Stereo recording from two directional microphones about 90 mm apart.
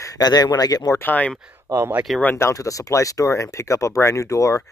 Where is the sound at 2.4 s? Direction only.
35° left (ahead or behind).